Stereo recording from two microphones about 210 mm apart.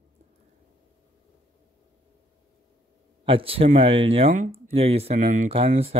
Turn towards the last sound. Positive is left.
turn(degrees=-30)  # may be behind; listen again after turning